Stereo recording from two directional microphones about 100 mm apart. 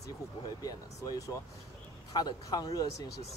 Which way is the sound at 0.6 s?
40° left (ahead or behind).